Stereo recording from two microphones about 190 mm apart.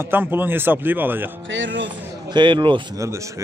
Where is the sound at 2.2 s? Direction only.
25° right (ahead or behind).